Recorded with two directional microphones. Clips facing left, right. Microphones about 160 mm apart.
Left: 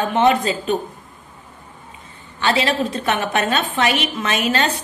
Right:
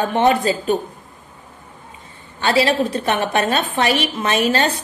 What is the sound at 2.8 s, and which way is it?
A woman's voice, 35° right (ahead or behind).